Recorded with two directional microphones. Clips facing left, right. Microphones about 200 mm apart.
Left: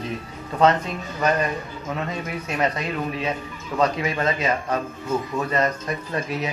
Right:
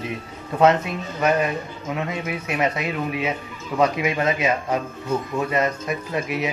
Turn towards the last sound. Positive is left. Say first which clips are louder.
# right 2 dB
turn(degrees=-10)  # may be behind; listen again after turning